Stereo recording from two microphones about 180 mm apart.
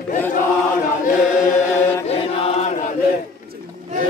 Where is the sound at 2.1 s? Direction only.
35° left (ahead or behind).